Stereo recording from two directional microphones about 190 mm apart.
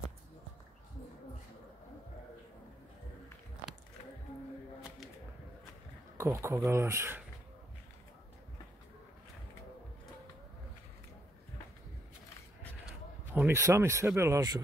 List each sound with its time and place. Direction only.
6.1 s speech: 15° right (ahead or behind)
12.8 s a sound: 10° right (ahead or behind)
14.1 s speech: 15° right (ahead or behind)